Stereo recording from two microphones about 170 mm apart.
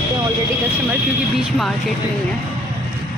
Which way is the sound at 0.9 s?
Centre (ahead or behind).